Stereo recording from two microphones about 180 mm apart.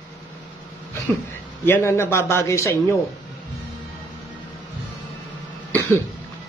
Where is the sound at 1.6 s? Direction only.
15° left (ahead or behind).